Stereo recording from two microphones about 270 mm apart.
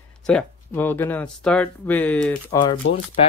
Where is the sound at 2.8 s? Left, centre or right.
Left.